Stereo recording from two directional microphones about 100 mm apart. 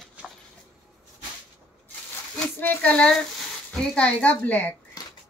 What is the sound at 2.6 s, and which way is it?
Speech, 20° left (ahead or behind).